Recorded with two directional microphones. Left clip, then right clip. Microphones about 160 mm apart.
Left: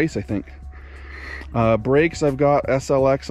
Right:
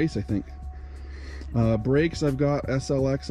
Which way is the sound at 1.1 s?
20° right (ahead or behind).